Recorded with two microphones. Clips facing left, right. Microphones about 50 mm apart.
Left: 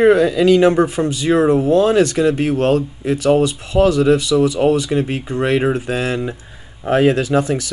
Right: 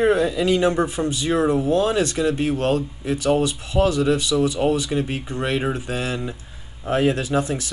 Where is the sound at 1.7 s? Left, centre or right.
Left.